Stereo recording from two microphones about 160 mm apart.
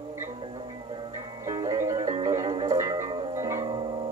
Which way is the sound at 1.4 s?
20° right (ahead or behind).